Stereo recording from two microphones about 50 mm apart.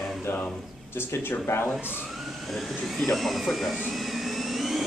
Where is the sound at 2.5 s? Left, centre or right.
Centre.